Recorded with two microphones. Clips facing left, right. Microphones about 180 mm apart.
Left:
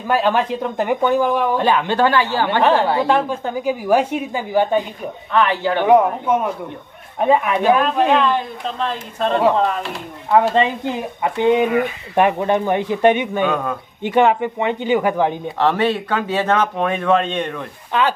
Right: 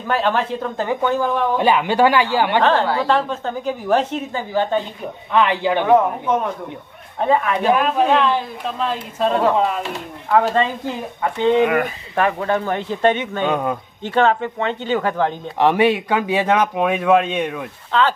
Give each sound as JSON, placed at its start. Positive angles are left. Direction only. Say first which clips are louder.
{"t": 0.0, "sound": "speech", "louder": "left 2 dB", "side_deg": 10}
{"t": 1.6, "sound": "speech", "louder": "right 1 dB", "side_deg": -10}
{"t": 2.6, "sound": "speech", "louder": "left 2 dB", "side_deg": 10}
{"t": 5.3, "sound": "speech", "louder": "even", "side_deg": -15}
{"t": 5.9, "sound": "speech", "louder": "left 3 dB", "side_deg": 10}
{"t": 7.6, "sound": "speech", "louder": "left 1 dB", "side_deg": -5}
{"t": 10.3, "sound": "speech", "louder": "left 2 dB", "side_deg": 20}
{"t": 15.5, "sound": "speech", "louder": "right 5 dB", "side_deg": -15}
{"t": 17.9, "sound": "speech", "louder": "right 1 dB", "side_deg": 15}